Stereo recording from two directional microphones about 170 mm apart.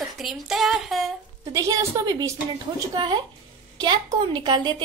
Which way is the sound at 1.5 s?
20° right (ahead or behind).